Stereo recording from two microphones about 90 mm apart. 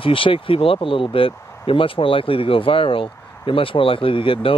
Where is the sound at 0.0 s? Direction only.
80° left.